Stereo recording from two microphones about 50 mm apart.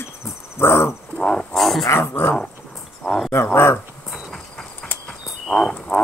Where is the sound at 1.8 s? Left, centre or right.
Left.